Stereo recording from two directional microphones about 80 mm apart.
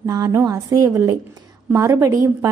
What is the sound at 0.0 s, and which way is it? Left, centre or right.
A woman's voice, right.